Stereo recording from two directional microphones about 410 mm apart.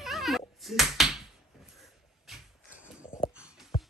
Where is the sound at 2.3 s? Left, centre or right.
Centre.